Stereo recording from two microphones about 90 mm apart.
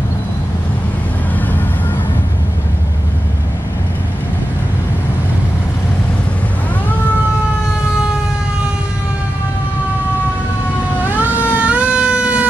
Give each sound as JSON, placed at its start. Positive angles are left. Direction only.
{"t": 11.1, "sound": "vehicle", "side_deg": -20}